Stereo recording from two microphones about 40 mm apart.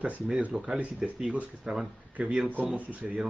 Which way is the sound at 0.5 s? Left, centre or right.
Centre.